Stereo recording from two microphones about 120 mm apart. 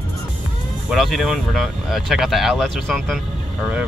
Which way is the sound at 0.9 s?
Centre (ahead or behind).